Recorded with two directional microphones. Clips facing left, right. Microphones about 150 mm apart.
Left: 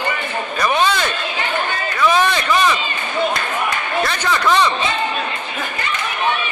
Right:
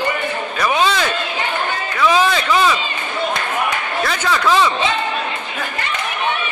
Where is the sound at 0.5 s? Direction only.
5° right (ahead or behind).